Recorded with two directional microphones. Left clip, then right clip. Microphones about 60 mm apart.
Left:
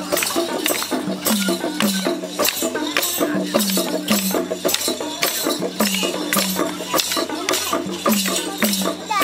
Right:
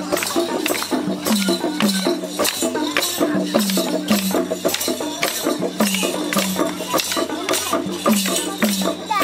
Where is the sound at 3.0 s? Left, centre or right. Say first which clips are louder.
Even; left.